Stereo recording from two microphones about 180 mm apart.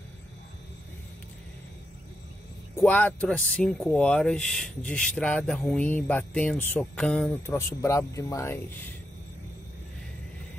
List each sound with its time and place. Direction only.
2.7 s speech: 5° left (ahead or behind)